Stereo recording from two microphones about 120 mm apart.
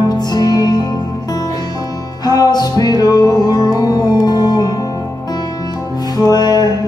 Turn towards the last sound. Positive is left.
turn(degrees=35)  # may be behind; listen again after turning